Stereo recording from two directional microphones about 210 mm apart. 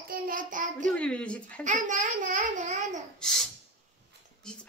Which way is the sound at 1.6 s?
35° right (ahead or behind).